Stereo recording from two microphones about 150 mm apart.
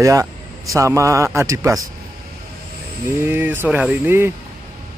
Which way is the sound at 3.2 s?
15° right (ahead or behind).